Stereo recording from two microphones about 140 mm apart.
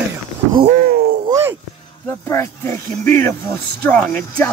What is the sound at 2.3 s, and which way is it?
Speech, 20° left (ahead or behind).